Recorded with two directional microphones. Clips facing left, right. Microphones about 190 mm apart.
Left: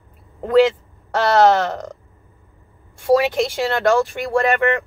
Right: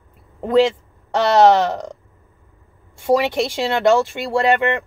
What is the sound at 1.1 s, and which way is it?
Speech, 15° right (ahead or behind).